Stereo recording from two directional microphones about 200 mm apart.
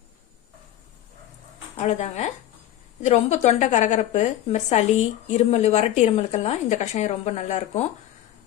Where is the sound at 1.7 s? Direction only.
30° left (ahead or behind).